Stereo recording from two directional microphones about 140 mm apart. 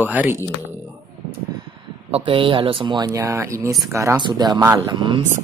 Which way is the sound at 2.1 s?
40° right (ahead or behind).